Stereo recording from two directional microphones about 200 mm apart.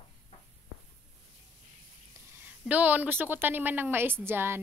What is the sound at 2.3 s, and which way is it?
A woman's voice, 10° right (ahead or behind).